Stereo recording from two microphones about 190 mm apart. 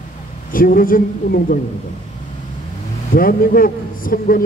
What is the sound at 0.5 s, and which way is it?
A man's voice, 50° left (ahead or behind).